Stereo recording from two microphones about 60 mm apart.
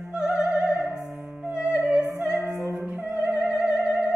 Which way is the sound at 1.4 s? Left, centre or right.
Centre.